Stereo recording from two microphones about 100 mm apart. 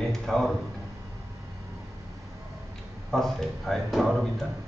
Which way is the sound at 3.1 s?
5° left (ahead or behind).